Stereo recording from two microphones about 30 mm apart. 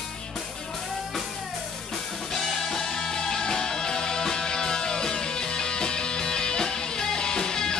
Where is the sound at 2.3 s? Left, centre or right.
Centre.